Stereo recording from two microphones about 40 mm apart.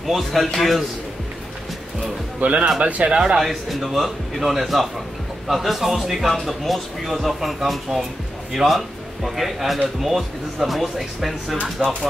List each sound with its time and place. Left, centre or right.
0.0 s speech: centre
2.4 s speech: right
3.1 s speech: right
3.3 s speech: centre